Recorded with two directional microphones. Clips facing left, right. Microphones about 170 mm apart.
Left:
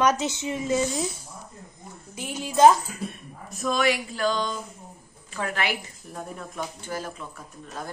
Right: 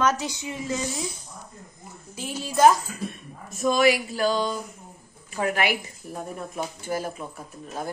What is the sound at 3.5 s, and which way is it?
A woman's voice, centre (ahead or behind).